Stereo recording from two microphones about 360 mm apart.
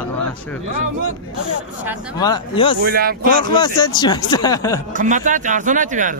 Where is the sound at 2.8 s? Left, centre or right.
Right.